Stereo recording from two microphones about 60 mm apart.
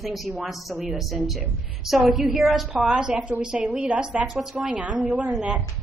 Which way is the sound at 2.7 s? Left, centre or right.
Centre.